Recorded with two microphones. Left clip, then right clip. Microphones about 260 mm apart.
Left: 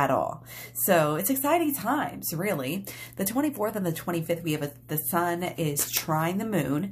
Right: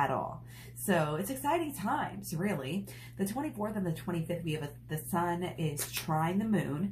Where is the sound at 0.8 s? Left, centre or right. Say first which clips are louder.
Left 8 dB; left.